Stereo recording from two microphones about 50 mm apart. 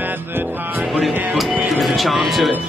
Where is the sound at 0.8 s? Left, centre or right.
Centre.